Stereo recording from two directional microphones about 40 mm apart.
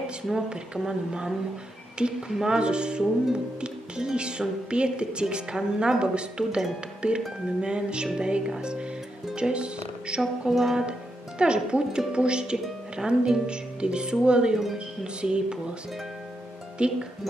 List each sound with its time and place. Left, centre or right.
0.0 s a woman's voice: right
10.5 s music: centre
10.9 s speech: right
16.8 s speech: right